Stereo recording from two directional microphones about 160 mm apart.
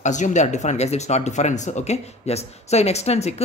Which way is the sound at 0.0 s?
50° left (ahead or behind).